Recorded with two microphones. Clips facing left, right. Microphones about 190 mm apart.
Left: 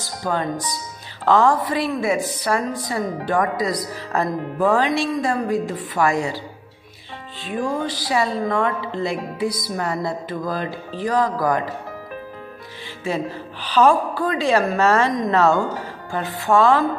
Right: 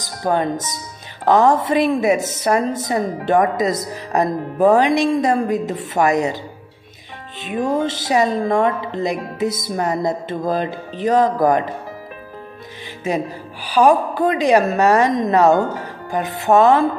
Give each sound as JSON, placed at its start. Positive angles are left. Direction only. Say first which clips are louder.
{"t": 0.0, "sound": "a woman's voice", "louder": "right 5 dB", "side_deg": -20}
{"t": 13.0, "sound": "a woman's voice", "louder": "right 3 dB", "side_deg": -20}